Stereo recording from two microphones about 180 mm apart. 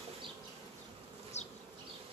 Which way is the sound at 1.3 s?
40° left (ahead or behind).